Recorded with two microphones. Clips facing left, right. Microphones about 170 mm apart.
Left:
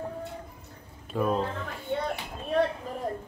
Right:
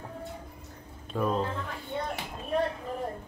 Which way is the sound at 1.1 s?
5° left (ahead or behind).